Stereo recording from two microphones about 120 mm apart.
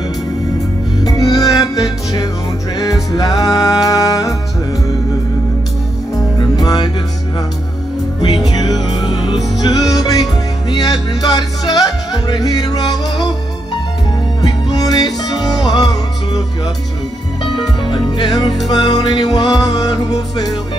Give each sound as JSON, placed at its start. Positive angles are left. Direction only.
{"t": 1.0, "sound": "music", "side_deg": 30}
{"t": 6.3, "sound": "music", "side_deg": 35}
{"t": 8.5, "sound": "music", "side_deg": 35}
{"t": 14.4, "sound": "music", "side_deg": 35}
{"t": 17.8, "sound": "music", "side_deg": 40}